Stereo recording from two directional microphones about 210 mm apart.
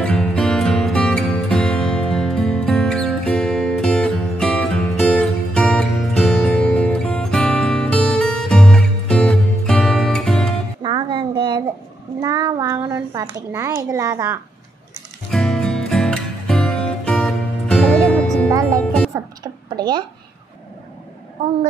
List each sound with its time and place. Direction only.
0.0 s music: 5° left (ahead or behind)
10.8 s music: 20° right (ahead or behind)
12.2 s a sound: 20° right (ahead or behind)
15.3 s music: centre (ahead or behind)
18.5 s music: 15° right (ahead or behind)
18.8 s music: 5° left (ahead or behind)
19.1 s a sound: 20° right (ahead or behind)